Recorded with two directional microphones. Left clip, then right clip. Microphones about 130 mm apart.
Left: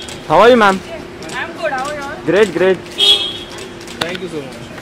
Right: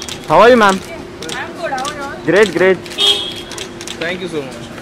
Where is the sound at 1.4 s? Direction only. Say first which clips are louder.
Left 2 dB; 5° right (ahead or behind).